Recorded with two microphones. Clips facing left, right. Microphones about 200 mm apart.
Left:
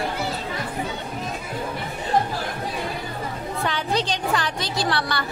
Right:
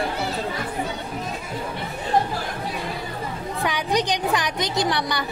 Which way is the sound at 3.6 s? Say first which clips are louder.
Right 2 dB; 15° right (ahead or behind).